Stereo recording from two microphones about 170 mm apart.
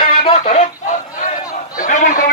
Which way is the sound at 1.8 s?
50° left (ahead or behind).